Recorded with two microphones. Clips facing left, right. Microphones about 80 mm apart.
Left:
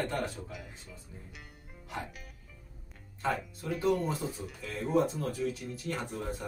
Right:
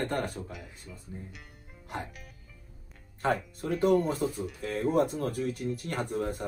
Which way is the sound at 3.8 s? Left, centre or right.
Right.